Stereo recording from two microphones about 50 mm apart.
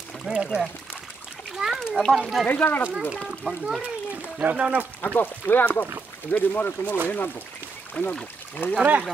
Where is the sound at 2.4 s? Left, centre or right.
Left.